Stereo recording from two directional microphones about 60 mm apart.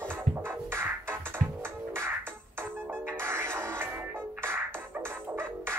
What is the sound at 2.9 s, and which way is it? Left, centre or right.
Music, right.